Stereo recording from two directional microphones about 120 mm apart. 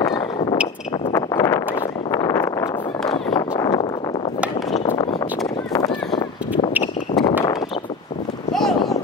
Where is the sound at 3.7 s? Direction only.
40° left (ahead or behind).